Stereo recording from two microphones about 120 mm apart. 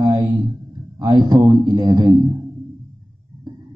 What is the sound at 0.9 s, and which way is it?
Speech, 40° right (ahead or behind).